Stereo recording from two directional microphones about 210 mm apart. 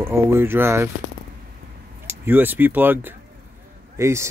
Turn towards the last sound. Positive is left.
turn(degrees=-15)  # may be behind; listen again after turning